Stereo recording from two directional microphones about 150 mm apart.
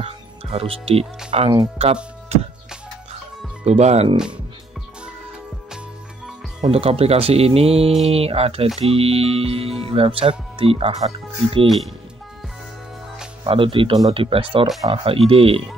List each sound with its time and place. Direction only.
0.0 s speech: 40° right (ahead or behind)
3.6 s speech: 45° right (ahead or behind)
6.6 s speech: 40° right (ahead or behind)
13.4 s speech: 35° right (ahead or behind)